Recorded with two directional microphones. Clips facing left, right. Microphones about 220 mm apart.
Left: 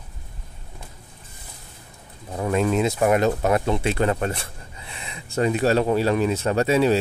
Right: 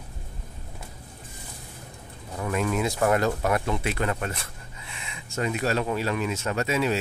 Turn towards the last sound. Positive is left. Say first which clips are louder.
# left 7 dB
turn(degrees=35)  # may be behind; listen again after turning